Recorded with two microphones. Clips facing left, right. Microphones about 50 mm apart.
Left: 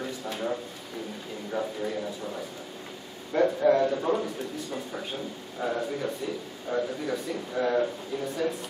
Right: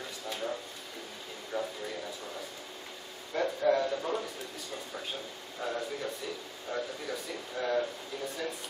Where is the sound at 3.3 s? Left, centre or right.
Centre.